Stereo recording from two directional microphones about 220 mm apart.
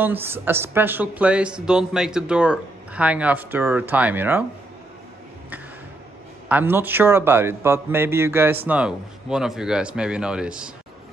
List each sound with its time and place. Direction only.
0.0 s speech: 10° right (ahead or behind)
6.5 s speech: 10° right (ahead or behind)